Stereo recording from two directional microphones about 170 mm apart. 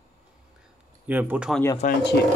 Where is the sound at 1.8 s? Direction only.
45° left (ahead or behind).